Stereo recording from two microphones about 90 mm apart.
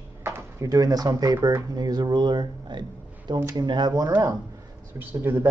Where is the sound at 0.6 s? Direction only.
45° right (ahead or behind).